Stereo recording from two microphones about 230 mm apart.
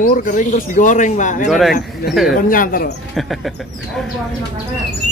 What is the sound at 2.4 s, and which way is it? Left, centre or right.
Speech, left.